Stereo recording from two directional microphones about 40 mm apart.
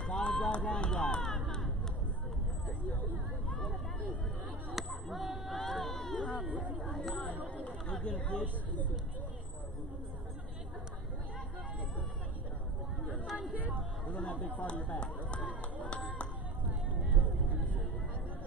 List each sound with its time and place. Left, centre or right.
0.0 s speech: left
4.7 s speech: centre
6.4 s speech: right
7.5 s speech: left
13.4 s a sound: right
14.0 s speech: left
14.7 s speech: left
17.0 s music: right